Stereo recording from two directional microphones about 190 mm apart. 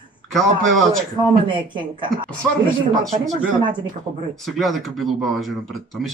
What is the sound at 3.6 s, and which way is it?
Speech, 25° right (ahead or behind).